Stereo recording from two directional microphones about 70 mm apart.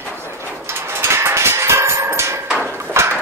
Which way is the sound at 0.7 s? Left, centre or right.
Right.